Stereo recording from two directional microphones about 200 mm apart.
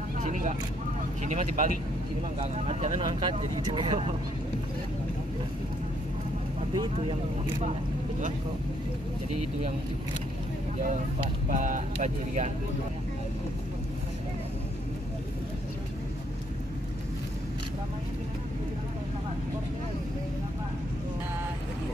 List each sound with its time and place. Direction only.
0.2 s vehicle: 40° right (ahead or behind)
1.2 s speech: 35° right (ahead or behind)
6.7 s speech: 20° right (ahead or behind)
10.8 s speech: 40° right (ahead or behind)